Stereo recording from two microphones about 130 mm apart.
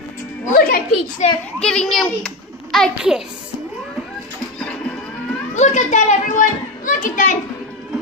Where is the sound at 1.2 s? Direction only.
60° left (ahead or behind).